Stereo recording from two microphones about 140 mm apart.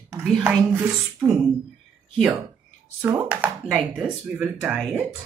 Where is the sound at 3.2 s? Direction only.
10° right (ahead or behind).